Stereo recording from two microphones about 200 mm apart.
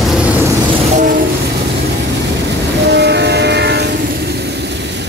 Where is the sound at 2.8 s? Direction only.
60° right (ahead or behind).